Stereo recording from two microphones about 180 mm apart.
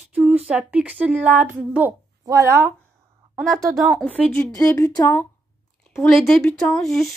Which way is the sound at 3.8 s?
Centre (ahead or behind).